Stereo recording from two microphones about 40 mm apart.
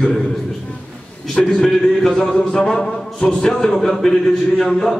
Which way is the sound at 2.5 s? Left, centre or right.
Centre.